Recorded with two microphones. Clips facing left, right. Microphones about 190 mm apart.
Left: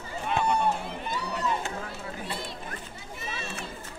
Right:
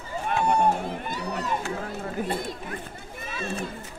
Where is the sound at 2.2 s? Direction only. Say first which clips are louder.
Right 9 dB; 50° right (ahead or behind).